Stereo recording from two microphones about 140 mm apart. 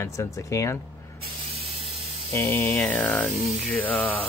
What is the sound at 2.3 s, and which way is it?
Speech, 20° left (ahead or behind).